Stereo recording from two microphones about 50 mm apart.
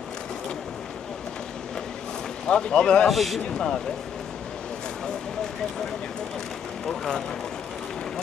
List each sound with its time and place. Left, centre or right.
2.4 s speech: centre
3.1 s speech: centre
6.9 s speech: centre